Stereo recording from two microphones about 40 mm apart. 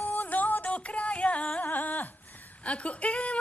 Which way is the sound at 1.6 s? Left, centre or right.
Left.